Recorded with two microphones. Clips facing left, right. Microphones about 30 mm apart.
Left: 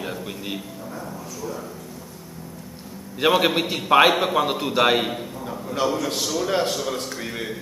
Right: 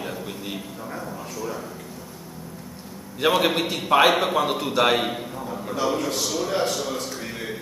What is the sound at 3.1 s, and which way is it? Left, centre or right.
A man's voice, centre.